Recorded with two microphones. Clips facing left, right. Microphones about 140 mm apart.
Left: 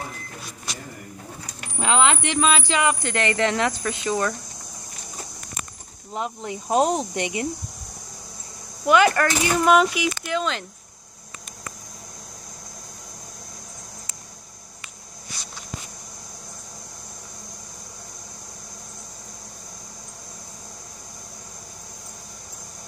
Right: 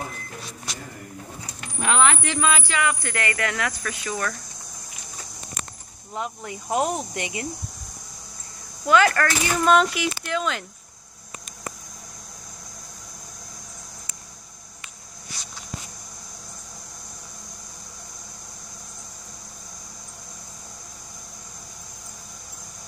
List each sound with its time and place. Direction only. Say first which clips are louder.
1.8 s speech: left 1 dB; 20° left (ahead or behind)
6.1 s speech: left 2 dB; 20° left (ahead or behind)
8.8 s speech: left 1 dB; 20° left (ahead or behind)
9.6 s speech: left 1 dB; 5° left (ahead or behind)